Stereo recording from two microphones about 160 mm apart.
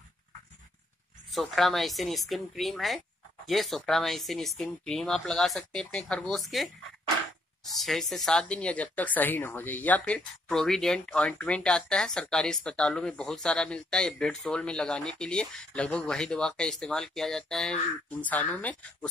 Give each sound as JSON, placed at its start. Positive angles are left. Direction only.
{"t": 1.3, "sound": "speech", "side_deg": 0}